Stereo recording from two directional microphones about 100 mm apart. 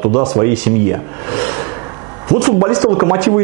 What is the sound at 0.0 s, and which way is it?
Speech, 15° right (ahead or behind).